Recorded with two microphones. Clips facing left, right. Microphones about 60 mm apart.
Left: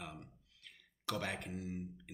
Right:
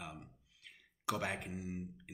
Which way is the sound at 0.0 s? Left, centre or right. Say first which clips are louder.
Even; centre.